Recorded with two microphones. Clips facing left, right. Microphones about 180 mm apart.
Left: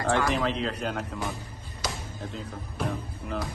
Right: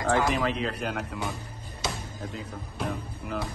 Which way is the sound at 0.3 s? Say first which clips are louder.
Even; centre (ahead or behind).